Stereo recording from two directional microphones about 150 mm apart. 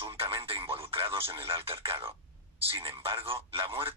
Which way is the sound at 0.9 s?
40° right (ahead or behind).